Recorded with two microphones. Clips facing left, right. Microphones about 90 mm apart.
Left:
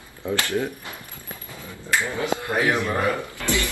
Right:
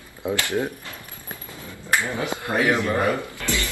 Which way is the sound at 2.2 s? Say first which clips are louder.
Even; 20° right (ahead or behind).